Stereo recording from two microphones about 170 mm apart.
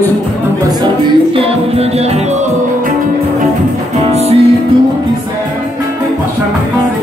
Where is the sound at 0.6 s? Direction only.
30° right (ahead or behind).